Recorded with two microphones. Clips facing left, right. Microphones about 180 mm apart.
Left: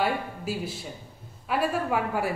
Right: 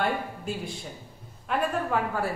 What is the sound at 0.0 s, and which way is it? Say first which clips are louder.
Speech: left 1 dB; 5° left (ahead or behind).